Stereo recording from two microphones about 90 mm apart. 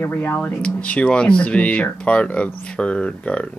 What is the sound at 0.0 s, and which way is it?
Speech, 20° left (ahead or behind).